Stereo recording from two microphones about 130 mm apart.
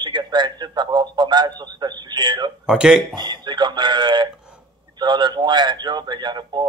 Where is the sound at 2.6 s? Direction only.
5° right (ahead or behind).